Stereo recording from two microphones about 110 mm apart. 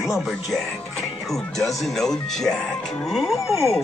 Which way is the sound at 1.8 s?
5° left (ahead or behind).